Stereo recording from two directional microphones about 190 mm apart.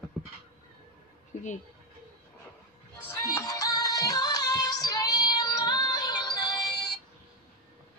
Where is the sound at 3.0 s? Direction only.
15° left (ahead or behind).